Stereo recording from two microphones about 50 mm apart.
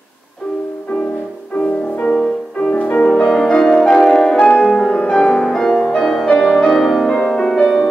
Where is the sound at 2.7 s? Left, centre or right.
Left.